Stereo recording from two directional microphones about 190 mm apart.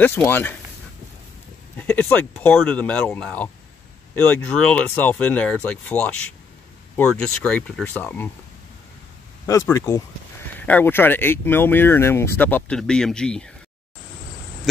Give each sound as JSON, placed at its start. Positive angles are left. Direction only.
{"t": 0.0, "sound": "speech", "side_deg": 10}
{"t": 1.8, "sound": "speech", "side_deg": 10}
{"t": 7.2, "sound": "speech", "side_deg": 5}
{"t": 9.5, "sound": "speech", "side_deg": 15}